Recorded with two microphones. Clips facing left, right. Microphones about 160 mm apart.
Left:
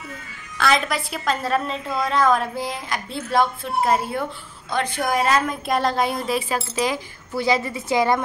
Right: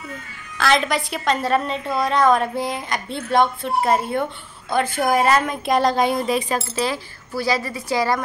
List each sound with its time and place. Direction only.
0.6 s a woman's voice: centre (ahead or behind)
6.7 s speech: 15° left (ahead or behind)